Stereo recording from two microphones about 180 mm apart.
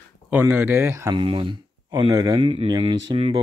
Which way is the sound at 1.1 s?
30° right (ahead or behind).